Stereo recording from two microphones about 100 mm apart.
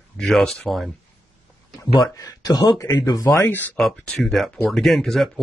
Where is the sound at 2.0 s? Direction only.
40° left (ahead or behind).